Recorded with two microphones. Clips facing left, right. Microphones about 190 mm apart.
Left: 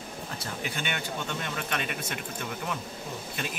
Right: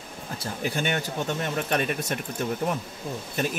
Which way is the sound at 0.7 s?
45° right (ahead or behind).